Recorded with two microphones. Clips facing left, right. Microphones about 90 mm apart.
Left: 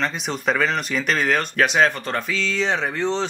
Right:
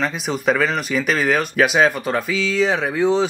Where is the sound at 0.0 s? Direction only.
5° right (ahead or behind).